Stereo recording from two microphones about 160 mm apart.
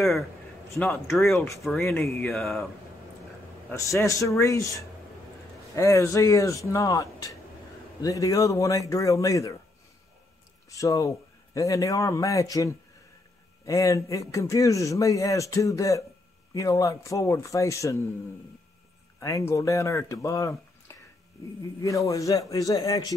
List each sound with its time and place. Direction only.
0.7 s a man's voice: 10° left (ahead or behind)
2.0 s speech: centre (ahead or behind)
3.7 s speech: 20° left (ahead or behind)
10.7 s speech: 20° left (ahead or behind)
19.1 s speech: 20° left (ahead or behind)